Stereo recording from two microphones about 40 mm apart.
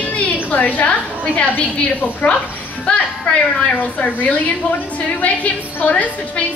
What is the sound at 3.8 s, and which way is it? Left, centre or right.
A woman's voice, left.